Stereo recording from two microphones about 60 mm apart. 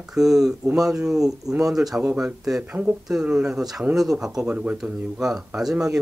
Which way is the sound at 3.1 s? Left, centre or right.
Centre.